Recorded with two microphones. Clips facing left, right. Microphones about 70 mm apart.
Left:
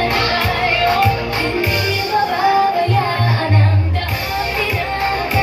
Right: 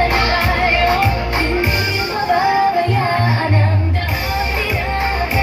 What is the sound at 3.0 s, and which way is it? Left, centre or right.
Music, centre.